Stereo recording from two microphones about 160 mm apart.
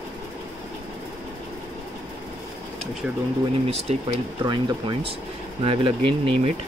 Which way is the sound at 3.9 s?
40° right (ahead or behind).